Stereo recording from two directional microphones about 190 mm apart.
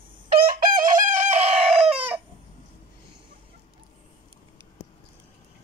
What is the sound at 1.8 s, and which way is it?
Chicken, 10° right (ahead or behind).